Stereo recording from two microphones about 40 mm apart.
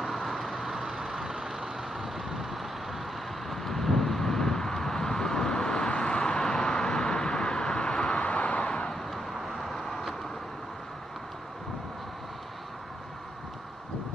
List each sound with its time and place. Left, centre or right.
0.0 s vehicle: centre
8.2 s vehicle: left
8.9 s vehicle: centre